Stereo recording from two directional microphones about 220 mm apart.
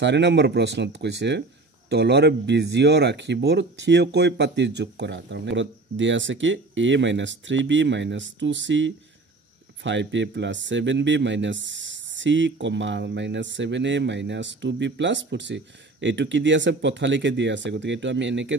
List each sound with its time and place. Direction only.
0.0 s speech: 50° right (ahead or behind)